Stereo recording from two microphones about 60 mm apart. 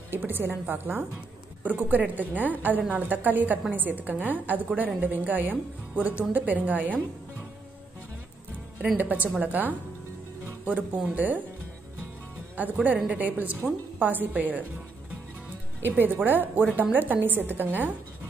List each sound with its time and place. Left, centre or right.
0.1 s a woman's voice: right
8.9 s speech: right
12.6 s speech: right
15.8 s a woman's voice: right